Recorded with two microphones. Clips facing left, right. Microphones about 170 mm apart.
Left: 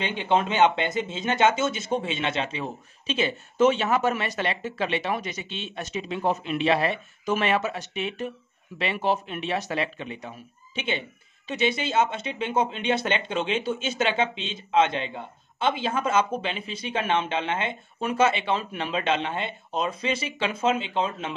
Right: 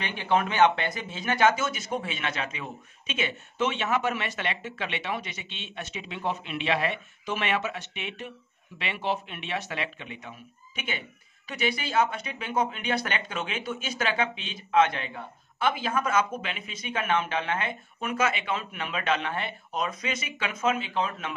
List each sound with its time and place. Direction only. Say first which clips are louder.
0.0 s speech: left 2 dB; 20° left (ahead or behind)